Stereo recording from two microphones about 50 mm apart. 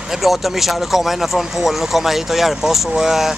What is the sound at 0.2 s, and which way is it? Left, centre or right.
Speech, centre.